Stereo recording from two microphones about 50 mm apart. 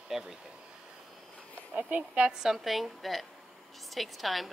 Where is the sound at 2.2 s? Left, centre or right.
Centre.